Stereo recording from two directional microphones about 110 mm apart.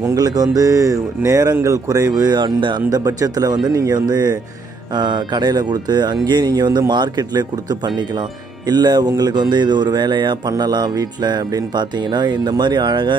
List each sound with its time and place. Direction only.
0.0 s speech: 35° right (ahead or behind)